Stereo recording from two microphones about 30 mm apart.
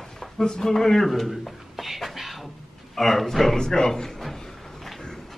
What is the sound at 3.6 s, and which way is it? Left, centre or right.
Speech, left.